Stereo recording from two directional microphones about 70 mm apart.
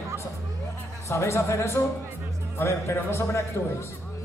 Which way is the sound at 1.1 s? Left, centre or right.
Left.